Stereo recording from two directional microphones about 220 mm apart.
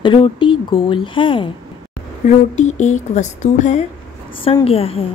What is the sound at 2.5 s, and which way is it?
Speech, 30° left (ahead or behind).